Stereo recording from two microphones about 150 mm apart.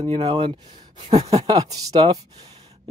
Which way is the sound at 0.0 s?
30° right (ahead or behind).